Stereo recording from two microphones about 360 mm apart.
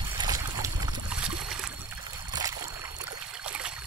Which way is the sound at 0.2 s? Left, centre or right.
Centre.